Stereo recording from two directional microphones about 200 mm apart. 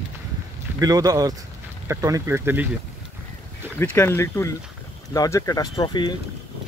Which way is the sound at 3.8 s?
10° left (ahead or behind).